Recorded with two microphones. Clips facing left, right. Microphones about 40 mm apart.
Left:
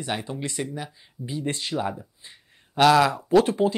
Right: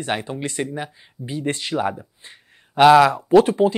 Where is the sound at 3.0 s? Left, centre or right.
Right.